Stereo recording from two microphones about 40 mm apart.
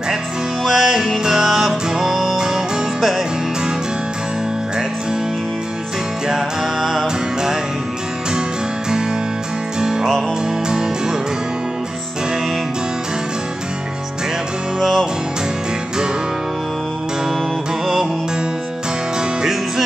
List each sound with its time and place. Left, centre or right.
0.7 s music: centre
6.2 s music: centre
9.8 s music: centre